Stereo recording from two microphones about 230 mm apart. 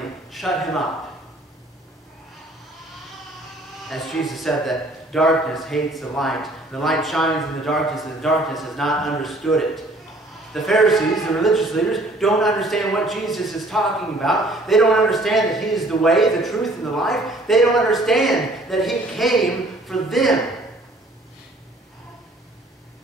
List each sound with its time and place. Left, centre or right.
0.3 s speech: centre
3.9 s a man's voice: centre